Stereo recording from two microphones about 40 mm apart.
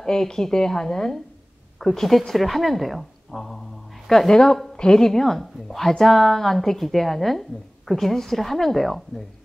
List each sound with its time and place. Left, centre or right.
0.0 s a woman's voice: centre
4.3 s a woman's voice: centre